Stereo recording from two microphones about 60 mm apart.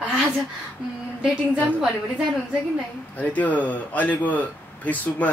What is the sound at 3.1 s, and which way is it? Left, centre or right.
Speech, left.